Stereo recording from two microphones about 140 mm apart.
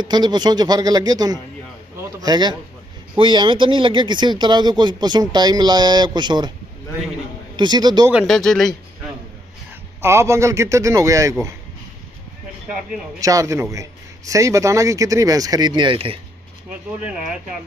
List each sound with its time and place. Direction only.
0.1 s a man's voice: 30° right (ahead or behind)
7.5 s speech: 30° right (ahead or behind)
8.1 s speech: centre (ahead or behind)
10.0 s a man's voice: 20° right (ahead or behind)
13.2 s a man's voice: 25° right (ahead or behind)